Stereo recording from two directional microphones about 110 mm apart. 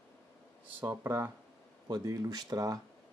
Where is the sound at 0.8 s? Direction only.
25° right (ahead or behind).